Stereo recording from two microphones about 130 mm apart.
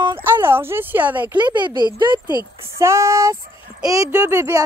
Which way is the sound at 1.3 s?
35° right (ahead or behind).